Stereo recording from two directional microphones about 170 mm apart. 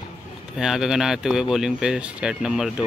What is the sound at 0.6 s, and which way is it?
Speech, centre (ahead or behind).